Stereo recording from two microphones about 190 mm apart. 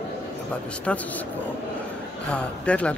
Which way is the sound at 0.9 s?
10° left (ahead or behind).